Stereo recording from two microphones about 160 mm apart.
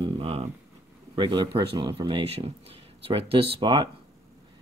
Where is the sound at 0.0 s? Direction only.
40° right (ahead or behind).